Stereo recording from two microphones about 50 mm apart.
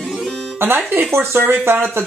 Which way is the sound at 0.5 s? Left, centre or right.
Right.